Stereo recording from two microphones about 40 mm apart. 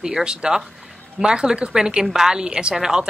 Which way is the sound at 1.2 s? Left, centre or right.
Right.